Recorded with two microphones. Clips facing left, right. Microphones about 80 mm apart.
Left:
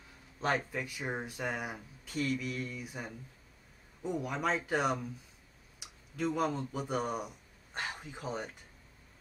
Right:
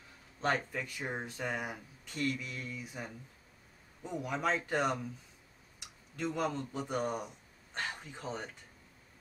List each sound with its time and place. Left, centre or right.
0.4 s speech: centre
8.0 s speech: centre